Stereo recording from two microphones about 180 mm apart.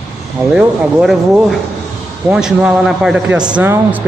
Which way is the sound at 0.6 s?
5° right (ahead or behind).